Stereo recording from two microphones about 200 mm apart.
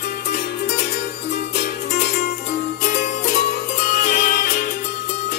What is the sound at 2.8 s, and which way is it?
Music, 35° left (ahead or behind).